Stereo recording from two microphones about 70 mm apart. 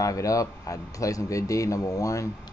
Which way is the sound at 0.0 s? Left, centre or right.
Left.